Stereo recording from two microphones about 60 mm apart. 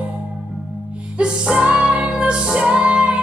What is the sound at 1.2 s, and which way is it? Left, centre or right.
Music, centre.